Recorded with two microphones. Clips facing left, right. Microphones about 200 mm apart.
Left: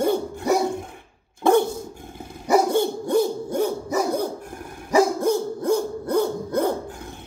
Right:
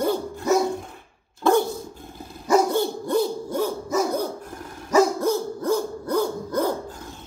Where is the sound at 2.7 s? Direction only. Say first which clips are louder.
Left 2 dB; 20° left (ahead or behind).